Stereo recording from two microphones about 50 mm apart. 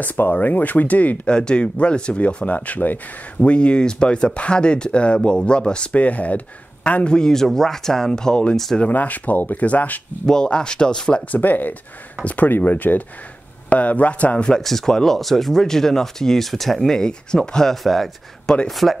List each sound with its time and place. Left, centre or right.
0.0 s speech: left
1.3 s speech: centre
3.3 s speech: left
8.8 s speech: left
10.2 s speech: centre
11.3 s speech: left
14.5 s speech: centre